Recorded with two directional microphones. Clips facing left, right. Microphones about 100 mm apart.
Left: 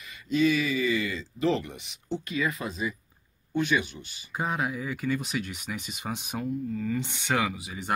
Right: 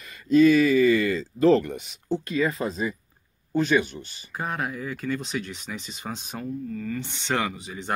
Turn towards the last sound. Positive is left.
turn(degrees=10)  # may be behind; listen again after turning